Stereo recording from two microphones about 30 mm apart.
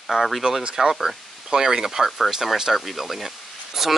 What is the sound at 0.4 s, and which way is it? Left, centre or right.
Speech, centre.